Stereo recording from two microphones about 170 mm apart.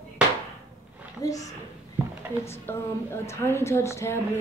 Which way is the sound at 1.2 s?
20° left (ahead or behind).